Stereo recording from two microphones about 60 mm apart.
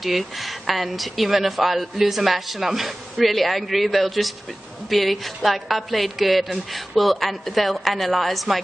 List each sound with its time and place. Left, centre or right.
0.0 s a woman's voice: centre